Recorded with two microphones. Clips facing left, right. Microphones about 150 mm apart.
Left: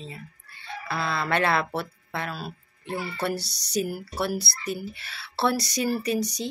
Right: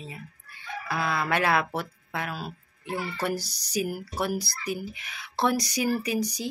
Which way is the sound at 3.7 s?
15° right (ahead or behind).